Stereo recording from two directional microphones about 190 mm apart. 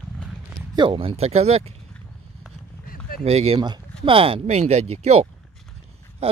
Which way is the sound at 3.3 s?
30° right (ahead or behind).